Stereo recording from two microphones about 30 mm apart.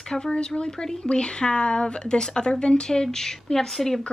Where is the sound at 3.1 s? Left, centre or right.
Centre.